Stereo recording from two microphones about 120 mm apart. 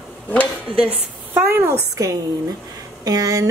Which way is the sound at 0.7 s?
45° right (ahead or behind).